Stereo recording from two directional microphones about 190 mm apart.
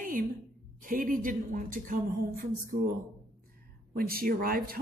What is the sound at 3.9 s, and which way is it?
Speech, 50° right (ahead or behind).